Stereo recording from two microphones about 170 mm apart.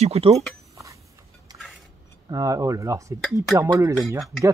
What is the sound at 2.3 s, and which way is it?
Speech, 20° right (ahead or behind).